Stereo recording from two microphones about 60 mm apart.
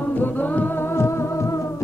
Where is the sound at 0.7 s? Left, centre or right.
Left.